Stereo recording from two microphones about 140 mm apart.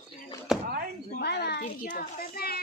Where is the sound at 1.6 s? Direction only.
70° left (ahead or behind); by 2.6 s 90° left.